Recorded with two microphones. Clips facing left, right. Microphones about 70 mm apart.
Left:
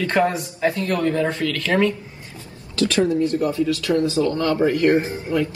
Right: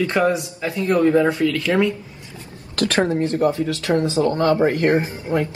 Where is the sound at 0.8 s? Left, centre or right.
Right.